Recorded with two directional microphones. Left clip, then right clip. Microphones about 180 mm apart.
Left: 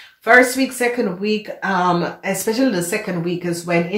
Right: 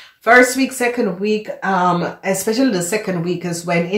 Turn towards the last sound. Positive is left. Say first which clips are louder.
# even
turn(degrees=-30)  # may be behind; listen again after turning